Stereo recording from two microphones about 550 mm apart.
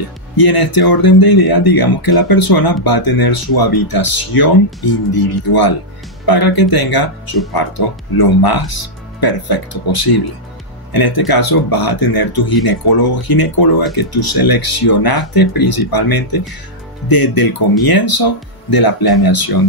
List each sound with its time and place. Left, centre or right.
0.4 s speech: left